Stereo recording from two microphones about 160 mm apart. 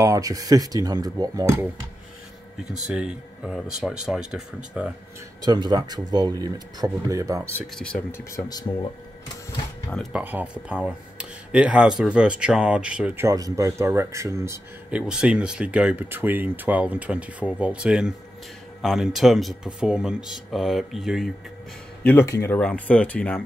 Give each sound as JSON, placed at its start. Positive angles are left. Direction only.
{"t": 0.0, "sound": "speech", "side_deg": -20}
{"t": 2.9, "sound": "speech", "side_deg": -5}
{"t": 5.4, "sound": "speech", "side_deg": -25}
{"t": 7.7, "sound": "speech", "side_deg": 5}
{"t": 8.5, "sound": "speech", "side_deg": 25}
{"t": 9.8, "sound": "speech", "side_deg": 5}
{"t": 10.2, "sound": "speech", "side_deg": -10}
{"t": 14.9, "sound": "speech", "side_deg": -5}
{"t": 22.0, "sound": "speech", "side_deg": 15}